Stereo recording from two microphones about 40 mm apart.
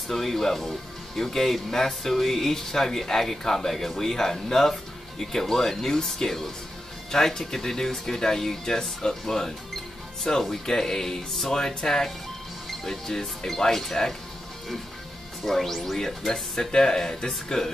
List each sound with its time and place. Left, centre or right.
0.1 s speech: centre
15.4 s speech: centre
16.3 s speech: centre